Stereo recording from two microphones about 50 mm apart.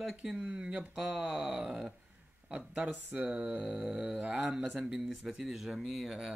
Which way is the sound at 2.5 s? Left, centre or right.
Right.